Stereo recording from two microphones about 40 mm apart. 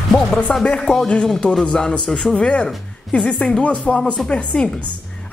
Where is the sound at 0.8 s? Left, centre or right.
Centre.